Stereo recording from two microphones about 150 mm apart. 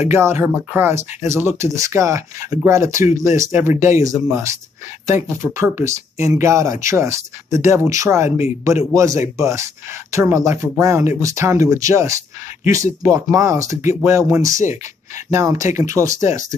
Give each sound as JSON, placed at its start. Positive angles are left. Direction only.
{"t": 0.1, "sound": "speech", "side_deg": -15}